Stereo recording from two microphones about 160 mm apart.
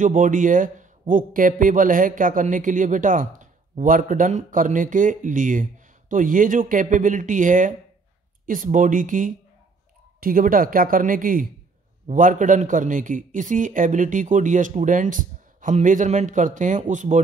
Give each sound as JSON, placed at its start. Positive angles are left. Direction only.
{"t": 0.0, "sound": "a man's voice", "side_deg": -55}